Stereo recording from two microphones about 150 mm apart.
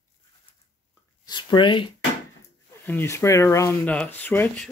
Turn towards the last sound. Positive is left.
turn(degrees=15)  # may be behind; listen again after turning